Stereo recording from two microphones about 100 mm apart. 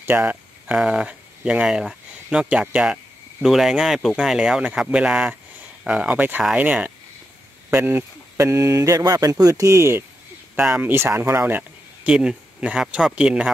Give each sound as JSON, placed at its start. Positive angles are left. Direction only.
{"t": 0.2, "sound": "speech", "side_deg": -10}
{"t": 8.4, "sound": "speech", "side_deg": -35}
{"t": 10.6, "sound": "speech", "side_deg": -10}
{"t": 10.9, "sound": "speech", "side_deg": -25}
{"t": 12.1, "sound": "speech", "side_deg": -10}